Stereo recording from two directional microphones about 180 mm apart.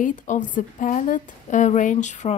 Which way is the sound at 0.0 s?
45° left (ahead or behind).